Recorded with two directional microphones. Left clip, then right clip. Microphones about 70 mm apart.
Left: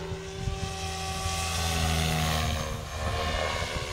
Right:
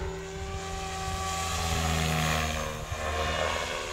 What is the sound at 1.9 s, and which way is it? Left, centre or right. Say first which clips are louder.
Vehicle: even; left.